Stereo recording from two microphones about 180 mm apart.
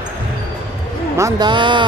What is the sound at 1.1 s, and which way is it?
Speech, 20° right (ahead or behind).